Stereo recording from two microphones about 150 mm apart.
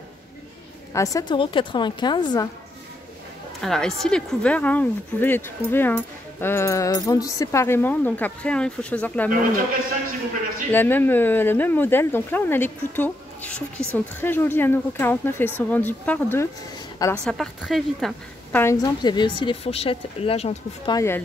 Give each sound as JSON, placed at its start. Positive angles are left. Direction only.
{"t": 0.9, "sound": "a woman's voice", "side_deg": 25}
{"t": 1.4, "sound": "a woman's voice", "side_deg": 35}
{"t": 3.6, "sound": "speech", "side_deg": 5}
{"t": 10.7, "sound": "a woman's voice", "side_deg": 15}
{"t": 18.5, "sound": "a woman's voice", "side_deg": 15}
{"t": 20.9, "sound": "speech", "side_deg": 15}